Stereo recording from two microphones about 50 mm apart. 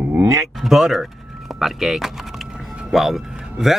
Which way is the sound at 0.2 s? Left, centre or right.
Right.